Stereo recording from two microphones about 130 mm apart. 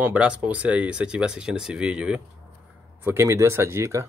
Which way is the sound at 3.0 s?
20° right (ahead or behind).